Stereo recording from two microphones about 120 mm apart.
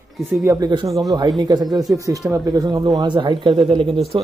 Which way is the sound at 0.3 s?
20° right (ahead or behind).